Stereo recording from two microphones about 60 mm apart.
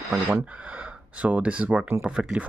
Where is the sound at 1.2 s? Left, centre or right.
Right.